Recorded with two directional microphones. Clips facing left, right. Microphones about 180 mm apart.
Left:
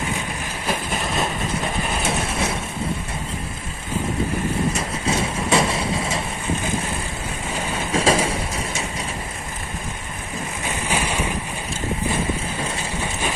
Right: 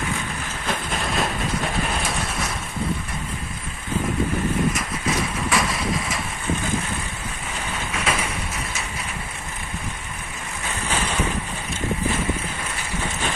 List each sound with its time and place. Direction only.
0.7 s train: 5° left (ahead or behind)
2.0 s ratchet: 25° left (ahead or behind)
4.7 s boat: 30° left (ahead or behind)
7.5 s vehicle: 35° left (ahead or behind)
10.9 s vehicle: 10° left (ahead or behind)